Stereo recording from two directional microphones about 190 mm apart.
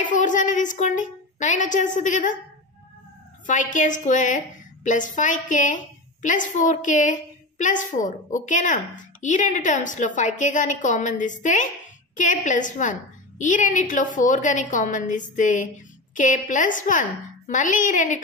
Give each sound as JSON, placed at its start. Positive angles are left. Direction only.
{"t": 0.0, "sound": "a woman's voice", "side_deg": 40}
{"t": 3.4, "sound": "a woman's voice", "side_deg": 40}